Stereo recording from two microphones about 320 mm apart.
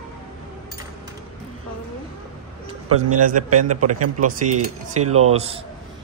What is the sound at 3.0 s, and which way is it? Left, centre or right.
A man's voice, right.